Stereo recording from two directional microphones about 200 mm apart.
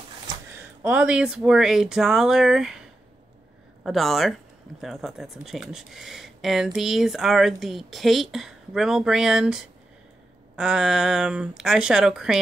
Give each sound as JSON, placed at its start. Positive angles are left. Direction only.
{"t": 0.5, "sound": "speech", "side_deg": -5}
{"t": 3.8, "sound": "speech", "side_deg": 0}